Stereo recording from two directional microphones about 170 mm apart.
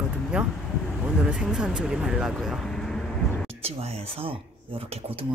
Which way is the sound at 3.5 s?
35° right (ahead or behind).